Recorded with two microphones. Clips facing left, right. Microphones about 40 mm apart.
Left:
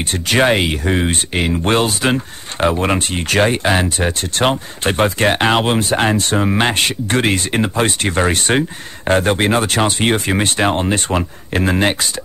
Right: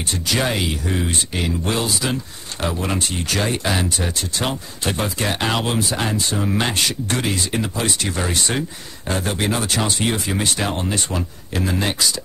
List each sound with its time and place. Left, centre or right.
0.0 s speech: left
6.5 s speech: left